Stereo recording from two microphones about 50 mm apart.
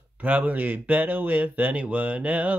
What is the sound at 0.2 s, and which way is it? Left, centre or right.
Speech, right.